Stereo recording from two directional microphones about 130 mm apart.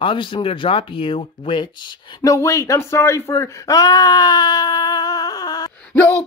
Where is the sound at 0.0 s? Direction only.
40° left (ahead or behind).